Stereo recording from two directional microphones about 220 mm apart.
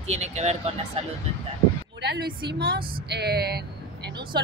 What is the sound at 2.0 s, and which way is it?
Speech, 50° right (ahead or behind).